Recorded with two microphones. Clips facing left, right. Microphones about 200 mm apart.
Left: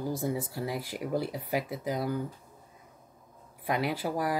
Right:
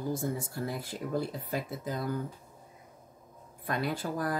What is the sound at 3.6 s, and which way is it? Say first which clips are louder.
Speech: left 3 dB; 90° left.